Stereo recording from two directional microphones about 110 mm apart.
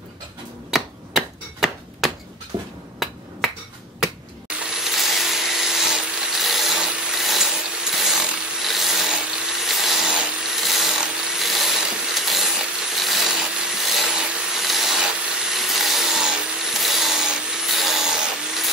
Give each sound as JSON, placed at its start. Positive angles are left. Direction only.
{"t": 0.7, "sound": "hammer", "side_deg": -5}
{"t": 2.5, "sound": "finger snapping", "side_deg": -45}
{"t": 3.0, "sound": "finger snapping", "side_deg": 0}
{"t": 4.7, "sound": "a sound", "side_deg": 0}